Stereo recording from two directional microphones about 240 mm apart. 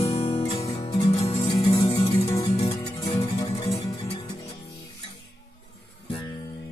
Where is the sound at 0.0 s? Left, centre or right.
Left.